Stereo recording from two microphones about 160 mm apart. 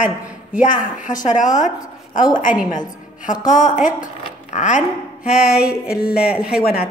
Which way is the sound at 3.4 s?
55° left (ahead or behind).